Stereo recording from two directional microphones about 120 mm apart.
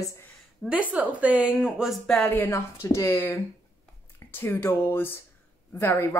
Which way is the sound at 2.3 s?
20° left (ahead or behind).